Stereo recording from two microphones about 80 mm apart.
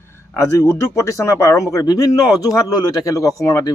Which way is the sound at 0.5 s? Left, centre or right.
Left.